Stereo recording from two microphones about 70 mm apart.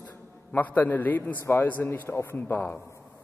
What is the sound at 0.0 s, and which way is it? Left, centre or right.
A man's voice, left.